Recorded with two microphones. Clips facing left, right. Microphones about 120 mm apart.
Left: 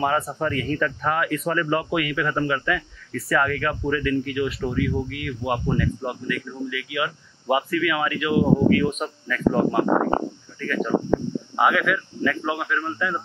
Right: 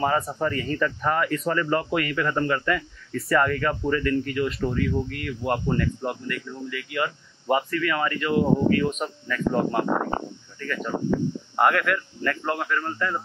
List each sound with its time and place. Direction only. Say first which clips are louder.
0.0 s speech: left 1 dB; 5° left (ahead or behind)
10.9 s speech: left 5 dB; 45° left (ahead or behind)
11.5 s speech: left 1 dB; centre (ahead or behind)